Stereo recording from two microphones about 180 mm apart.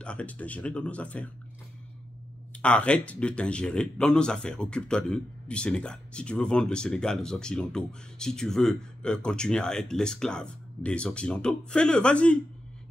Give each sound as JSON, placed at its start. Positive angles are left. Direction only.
{"t": 0.0, "sound": "speech", "side_deg": 5}
{"t": 2.5, "sound": "speech", "side_deg": 5}